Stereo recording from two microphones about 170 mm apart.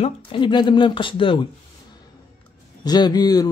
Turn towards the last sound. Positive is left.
turn(degrees=20)  # may be behind; listen again after turning